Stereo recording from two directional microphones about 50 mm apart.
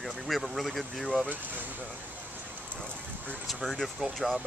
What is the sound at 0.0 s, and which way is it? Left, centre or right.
Speech, centre.